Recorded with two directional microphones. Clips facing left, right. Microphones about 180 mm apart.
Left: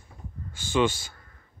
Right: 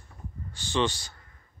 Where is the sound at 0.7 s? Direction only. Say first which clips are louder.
Left 3 dB; 5° left (ahead or behind).